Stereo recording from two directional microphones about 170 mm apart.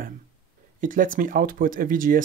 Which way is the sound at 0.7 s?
55° right (ahead or behind).